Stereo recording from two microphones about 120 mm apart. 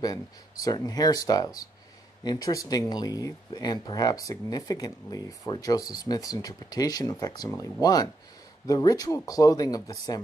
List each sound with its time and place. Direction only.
0.0 s speech: 30° left (ahead or behind)